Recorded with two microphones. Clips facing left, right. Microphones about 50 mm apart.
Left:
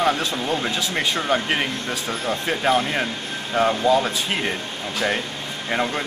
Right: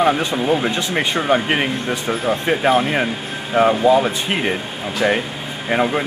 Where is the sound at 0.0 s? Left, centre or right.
Centre.